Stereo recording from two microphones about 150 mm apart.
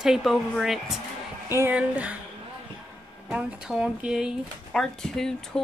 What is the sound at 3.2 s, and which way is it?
Speech, 5° right (ahead or behind).